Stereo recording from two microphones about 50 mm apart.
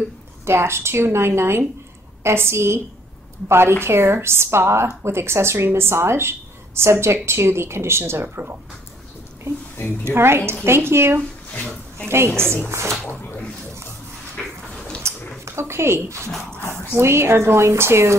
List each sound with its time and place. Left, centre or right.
0.5 s speech: right
10.0 s speech: right
12.6 s speech: right
15.0 s a sound: right
15.4 s speech: right